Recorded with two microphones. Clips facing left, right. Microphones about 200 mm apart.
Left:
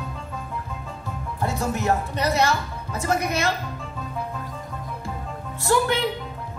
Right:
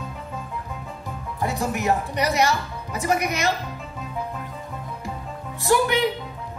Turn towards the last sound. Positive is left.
turn(degrees=-15)  # may be behind; listen again after turning